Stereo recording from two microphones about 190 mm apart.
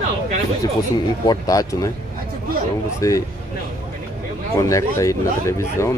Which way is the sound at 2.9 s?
15° left (ahead or behind).